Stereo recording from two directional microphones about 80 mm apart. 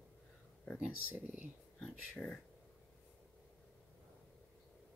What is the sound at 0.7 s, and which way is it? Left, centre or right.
Speech, centre.